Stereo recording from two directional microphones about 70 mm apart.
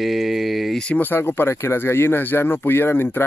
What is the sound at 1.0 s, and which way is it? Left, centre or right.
Speech, left.